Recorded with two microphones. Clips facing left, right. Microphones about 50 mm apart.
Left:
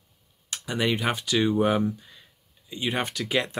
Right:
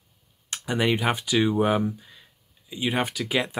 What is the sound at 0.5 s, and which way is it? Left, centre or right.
Speech, centre.